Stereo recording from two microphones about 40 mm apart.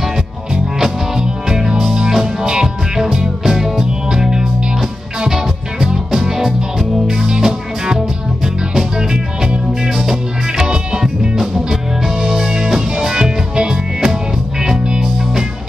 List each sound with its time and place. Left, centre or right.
0.7 s music: centre